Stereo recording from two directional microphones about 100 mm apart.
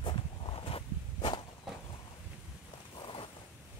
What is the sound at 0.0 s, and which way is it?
Walk, 60° left (ahead or behind).